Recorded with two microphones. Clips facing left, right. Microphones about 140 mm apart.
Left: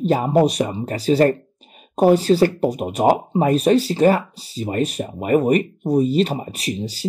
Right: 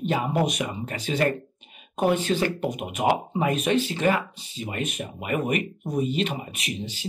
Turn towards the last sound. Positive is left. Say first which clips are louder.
# left 7 dB
turn(degrees=40)  # may be behind; listen again after turning